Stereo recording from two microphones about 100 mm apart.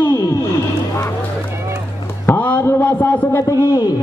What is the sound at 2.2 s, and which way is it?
Speech, 15° left (ahead or behind).